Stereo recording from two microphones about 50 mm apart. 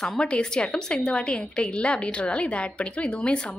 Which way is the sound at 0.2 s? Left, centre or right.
Centre.